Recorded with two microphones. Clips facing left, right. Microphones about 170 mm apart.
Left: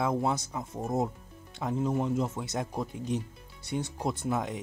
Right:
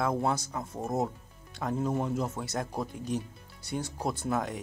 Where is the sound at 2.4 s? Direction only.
20° left (ahead or behind).